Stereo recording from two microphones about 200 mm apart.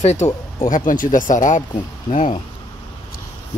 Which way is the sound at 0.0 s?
35° left (ahead or behind).